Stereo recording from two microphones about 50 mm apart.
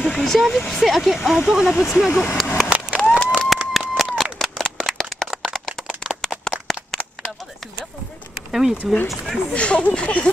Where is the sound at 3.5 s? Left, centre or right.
Centre.